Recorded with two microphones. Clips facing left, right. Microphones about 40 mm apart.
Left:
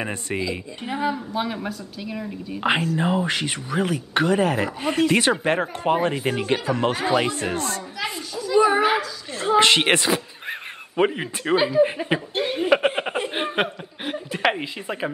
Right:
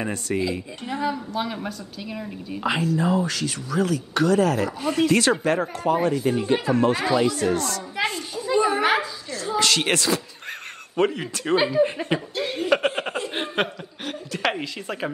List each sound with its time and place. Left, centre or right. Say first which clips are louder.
0.0 s speech: right 1 dB; left; by 2.6 s centre
3.0 s speech: even; left
8.0 s a sound: right 5 dB; right
8.5 s dog: left 4 dB; left
9.3 s speech: left 6 dB; left; by 11.5 s centre
11.5 s speech: left 1 dB; centre
11.8 s speech: left 2 dB; centre
12.4 s chuckle: left 3 dB; left
13.3 s speech: left 2 dB; centre